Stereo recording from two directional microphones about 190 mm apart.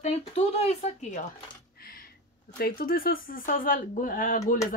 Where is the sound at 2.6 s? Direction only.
50° left (ahead or behind).